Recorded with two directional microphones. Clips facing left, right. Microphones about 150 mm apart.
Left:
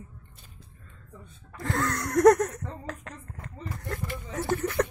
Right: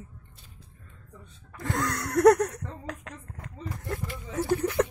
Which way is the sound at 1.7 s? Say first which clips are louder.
Left 1 dB; 10° right (ahead or behind).